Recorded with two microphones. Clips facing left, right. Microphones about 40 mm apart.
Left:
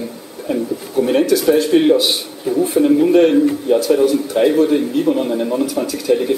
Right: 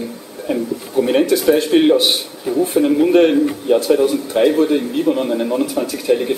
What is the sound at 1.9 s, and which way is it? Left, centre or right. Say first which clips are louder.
Speech: right 1 dB; right.